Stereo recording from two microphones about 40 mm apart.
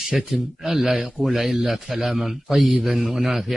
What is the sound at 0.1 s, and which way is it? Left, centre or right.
A man's voice, centre.